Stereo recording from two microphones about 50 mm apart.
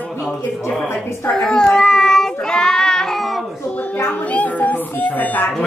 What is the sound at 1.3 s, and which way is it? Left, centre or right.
Child singing, centre.